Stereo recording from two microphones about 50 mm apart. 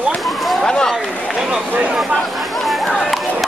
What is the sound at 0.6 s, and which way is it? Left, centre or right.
Speech, centre.